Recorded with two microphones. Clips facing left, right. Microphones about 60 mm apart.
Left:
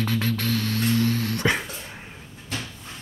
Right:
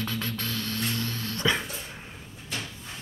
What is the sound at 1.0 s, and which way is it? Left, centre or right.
Music, left.